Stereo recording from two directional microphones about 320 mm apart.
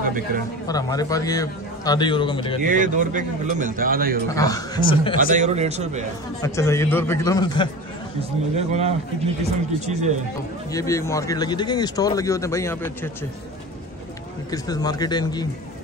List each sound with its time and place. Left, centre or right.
0.0 s a sound: right
0.7 s speech: centre
2.6 s a man's voice: right
4.4 s speech: centre
5.1 s a man's voice: right
6.4 s speech: centre
8.5 s a man's voice: centre
10.7 s speech: centre
14.5 s speech: centre